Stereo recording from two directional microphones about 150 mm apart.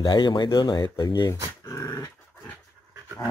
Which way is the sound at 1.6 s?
20° left (ahead or behind).